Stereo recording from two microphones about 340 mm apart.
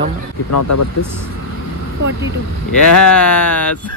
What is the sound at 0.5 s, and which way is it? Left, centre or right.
Speech, left.